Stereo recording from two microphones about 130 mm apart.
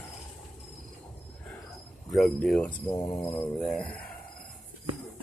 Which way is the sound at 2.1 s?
Centre (ahead or behind).